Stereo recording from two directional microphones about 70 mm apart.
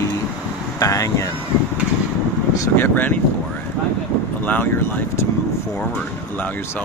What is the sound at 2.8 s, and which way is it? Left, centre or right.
Speech, left.